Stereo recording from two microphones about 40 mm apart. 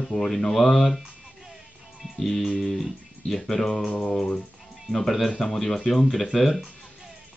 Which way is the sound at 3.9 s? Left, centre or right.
Left.